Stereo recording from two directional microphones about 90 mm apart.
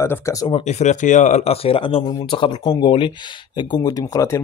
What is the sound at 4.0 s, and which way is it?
Speech, 35° left (ahead or behind).